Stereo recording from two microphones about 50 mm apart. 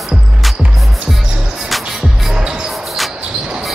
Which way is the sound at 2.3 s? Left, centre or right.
Centre.